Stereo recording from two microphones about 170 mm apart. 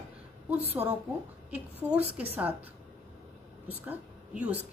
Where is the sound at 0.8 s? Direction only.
15° right (ahead or behind).